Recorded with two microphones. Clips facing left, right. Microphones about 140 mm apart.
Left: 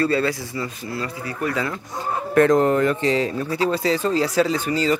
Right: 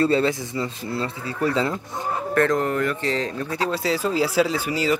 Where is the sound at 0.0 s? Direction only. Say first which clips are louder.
Right 1 dB; 20° right (ahead or behind).